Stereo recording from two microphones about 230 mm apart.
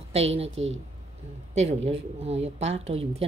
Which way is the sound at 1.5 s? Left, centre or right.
Right.